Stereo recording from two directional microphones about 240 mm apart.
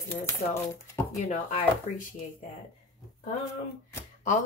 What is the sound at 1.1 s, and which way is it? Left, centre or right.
Speech, left.